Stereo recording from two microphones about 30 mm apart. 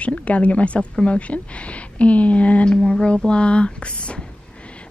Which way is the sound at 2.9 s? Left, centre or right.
Left.